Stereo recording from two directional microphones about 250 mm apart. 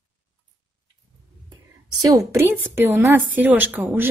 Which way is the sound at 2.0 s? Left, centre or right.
Centre.